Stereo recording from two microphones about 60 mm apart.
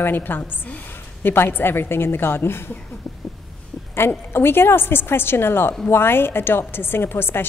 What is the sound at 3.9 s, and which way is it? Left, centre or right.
A woman's voice, left.